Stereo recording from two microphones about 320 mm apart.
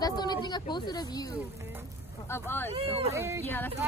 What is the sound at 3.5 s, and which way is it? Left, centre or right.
Speech, centre.